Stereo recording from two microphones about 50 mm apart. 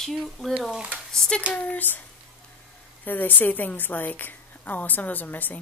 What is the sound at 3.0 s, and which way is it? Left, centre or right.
A woman's voice, left.